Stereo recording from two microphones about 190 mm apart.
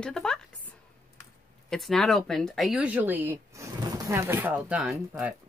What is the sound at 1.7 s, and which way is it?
Speech, centre (ahead or behind).